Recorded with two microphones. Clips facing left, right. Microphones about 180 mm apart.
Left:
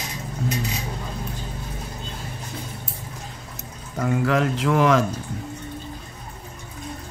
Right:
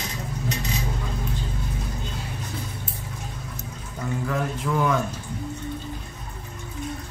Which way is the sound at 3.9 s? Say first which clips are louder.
Left 6 dB; 85° left.